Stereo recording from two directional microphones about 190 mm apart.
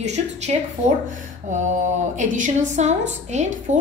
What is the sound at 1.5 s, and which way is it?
A woman's voice, 40° right (ahead or behind).